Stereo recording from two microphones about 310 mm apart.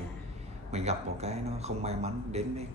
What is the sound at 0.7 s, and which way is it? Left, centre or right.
Speech, right.